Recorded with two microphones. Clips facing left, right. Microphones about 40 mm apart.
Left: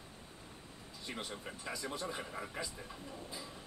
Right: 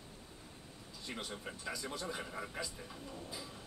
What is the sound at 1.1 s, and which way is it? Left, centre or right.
Speech, centre.